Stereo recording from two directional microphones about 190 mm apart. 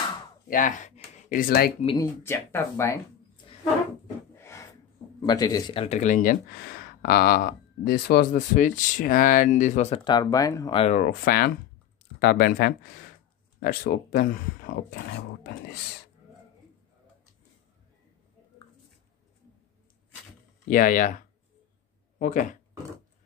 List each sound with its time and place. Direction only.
0.5 s speech: 45° left (ahead or behind)
2.0 s speech: 15° left (ahead or behind)
4.4 s snort: 15° left (ahead or behind)
5.2 s speech: 20° left (ahead or behind)
10.8 s speech: 40° left (ahead or behind); by 15.8 s 60° left (ahead or behind)
20.7 s speech: 45° left (ahead or behind)
22.2 s speech: 45° left (ahead or behind)